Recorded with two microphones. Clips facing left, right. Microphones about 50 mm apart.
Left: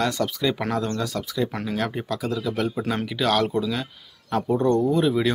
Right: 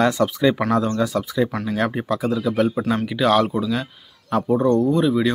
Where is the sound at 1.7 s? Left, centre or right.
Centre.